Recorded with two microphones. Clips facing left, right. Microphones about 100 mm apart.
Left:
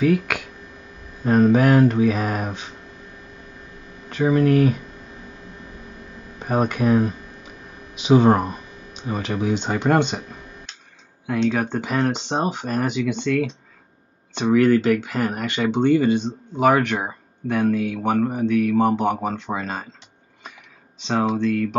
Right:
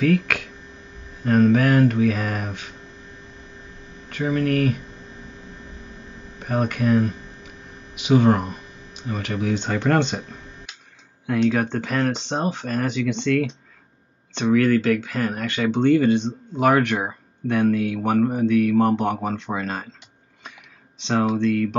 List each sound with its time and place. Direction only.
0.0 s speech: 10° left (ahead or behind)
1.2 s speech: 20° left (ahead or behind)
4.1 s speech: 30° left (ahead or behind)
4.5 s speech: 15° left (ahead or behind)
6.4 s speech: 25° left (ahead or behind); by 11.8 s 5° left (ahead or behind)
11.8 s speech: 15° left (ahead or behind)
14.3 s speech: 15° left (ahead or behind)
21.0 s speech: centre (ahead or behind)